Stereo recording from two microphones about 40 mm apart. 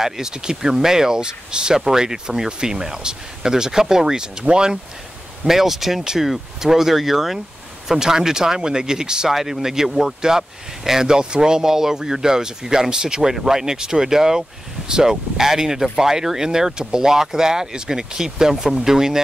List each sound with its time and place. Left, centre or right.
0.0 s speech: centre
5.5 s speech: centre